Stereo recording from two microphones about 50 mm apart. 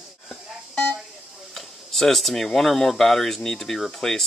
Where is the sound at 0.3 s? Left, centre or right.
Left.